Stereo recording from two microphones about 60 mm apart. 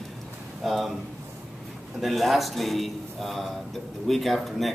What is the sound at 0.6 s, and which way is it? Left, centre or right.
Speech, centre.